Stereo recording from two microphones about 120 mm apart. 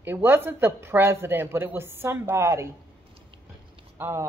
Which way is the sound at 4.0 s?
20° right (ahead or behind).